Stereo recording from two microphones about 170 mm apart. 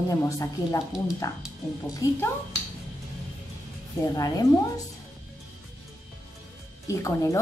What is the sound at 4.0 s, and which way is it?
Speech, 20° left (ahead or behind).